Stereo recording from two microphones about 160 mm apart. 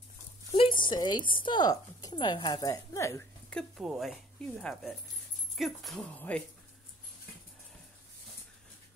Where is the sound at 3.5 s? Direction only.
Centre (ahead or behind).